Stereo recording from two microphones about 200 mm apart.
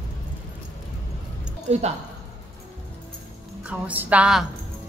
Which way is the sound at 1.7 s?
30° right (ahead or behind).